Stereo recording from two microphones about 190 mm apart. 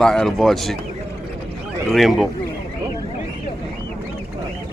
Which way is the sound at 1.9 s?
Centre (ahead or behind).